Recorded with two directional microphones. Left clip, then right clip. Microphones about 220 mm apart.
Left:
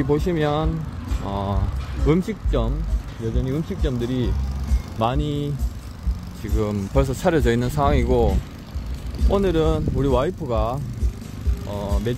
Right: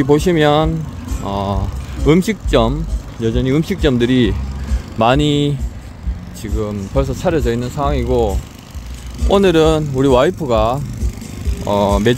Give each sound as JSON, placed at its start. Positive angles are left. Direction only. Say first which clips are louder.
{"t": 0.0, "sound": "speech", "louder": "right 9 dB", "side_deg": -20}
{"t": 2.0, "sound": "speech", "louder": "right 8 dB", "side_deg": -20}
{"t": 3.3, "sound": "speech", "louder": "right 10 dB", "side_deg": -35}
{"t": 6.6, "sound": "speech", "louder": "right 3 dB", "side_deg": 5}
{"t": 9.3, "sound": "speech", "louder": "right 9 dB", "side_deg": -20}
{"t": 11.6, "sound": "speech", "louder": "right 14 dB", "side_deg": -35}